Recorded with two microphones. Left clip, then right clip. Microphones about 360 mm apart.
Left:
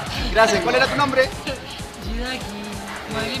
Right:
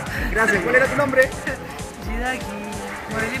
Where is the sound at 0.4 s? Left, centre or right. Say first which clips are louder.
Left 1 dB; centre.